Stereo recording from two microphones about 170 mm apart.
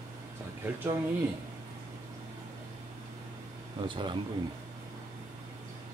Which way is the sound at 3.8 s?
30° right (ahead or behind).